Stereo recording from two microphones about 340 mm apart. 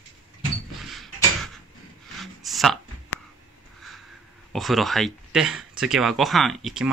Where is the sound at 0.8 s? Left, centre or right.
Centre.